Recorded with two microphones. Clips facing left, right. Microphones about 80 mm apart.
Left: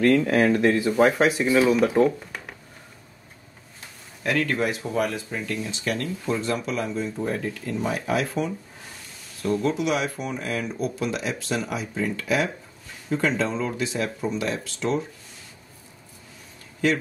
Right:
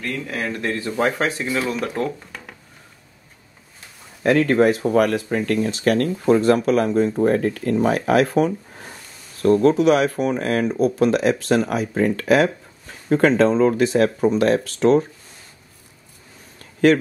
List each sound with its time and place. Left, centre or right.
0.3 s speech: left
0.7 s speech: centre
4.2 s speech: right
4.8 s speech: right
13.7 s speech: right